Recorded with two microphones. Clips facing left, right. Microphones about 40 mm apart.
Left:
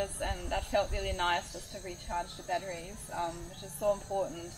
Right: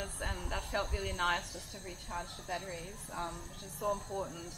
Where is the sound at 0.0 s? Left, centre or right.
Centre.